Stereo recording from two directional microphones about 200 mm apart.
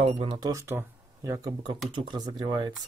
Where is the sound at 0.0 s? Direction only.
25° right (ahead or behind).